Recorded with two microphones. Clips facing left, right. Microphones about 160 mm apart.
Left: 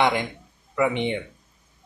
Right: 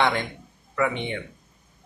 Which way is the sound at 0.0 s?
15° left (ahead or behind).